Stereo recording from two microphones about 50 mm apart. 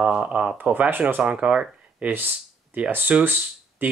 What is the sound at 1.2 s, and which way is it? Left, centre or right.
Speech, right.